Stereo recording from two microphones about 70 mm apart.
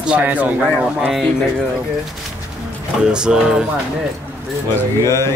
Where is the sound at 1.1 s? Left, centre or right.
Centre.